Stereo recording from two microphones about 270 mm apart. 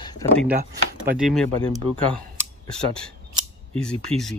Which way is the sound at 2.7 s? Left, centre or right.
Centre.